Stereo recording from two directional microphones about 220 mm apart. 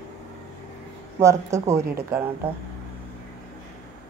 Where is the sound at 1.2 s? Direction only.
15° right (ahead or behind).